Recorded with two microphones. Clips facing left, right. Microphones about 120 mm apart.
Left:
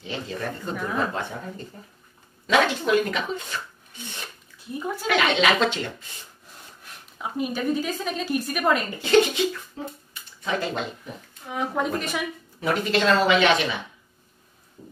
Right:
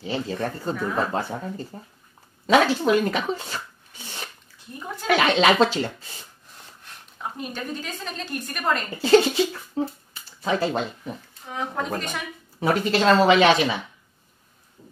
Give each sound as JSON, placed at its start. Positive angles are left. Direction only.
{"t": 0.0, "sound": "speech", "side_deg": -35}
{"t": 5.0, "sound": "speech", "side_deg": -35}
{"t": 6.8, "sound": "a woman's voice", "side_deg": 5}
{"t": 8.9, "sound": "speech", "side_deg": -35}
{"t": 10.1, "sound": "a sound", "side_deg": -35}
{"t": 11.4, "sound": "speech", "side_deg": 5}
{"t": 12.5, "sound": "speech", "side_deg": -35}